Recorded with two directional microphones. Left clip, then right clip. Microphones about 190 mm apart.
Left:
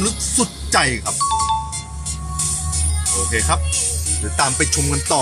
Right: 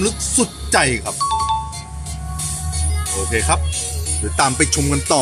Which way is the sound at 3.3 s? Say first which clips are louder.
Right 2 dB; 25° right (ahead or behind).